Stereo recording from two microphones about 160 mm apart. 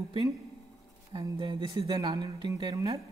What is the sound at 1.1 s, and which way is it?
Speech, 30° right (ahead or behind).